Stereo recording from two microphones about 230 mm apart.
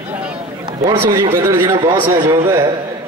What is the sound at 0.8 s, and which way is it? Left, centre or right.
A man's voice, centre.